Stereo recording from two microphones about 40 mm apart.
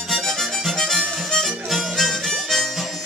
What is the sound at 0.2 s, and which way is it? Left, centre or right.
Music, centre.